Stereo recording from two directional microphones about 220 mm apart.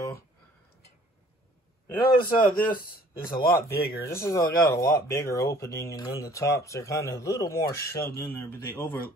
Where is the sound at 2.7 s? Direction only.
40° left (ahead or behind).